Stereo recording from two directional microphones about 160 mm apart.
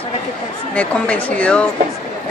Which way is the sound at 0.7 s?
10° left (ahead or behind).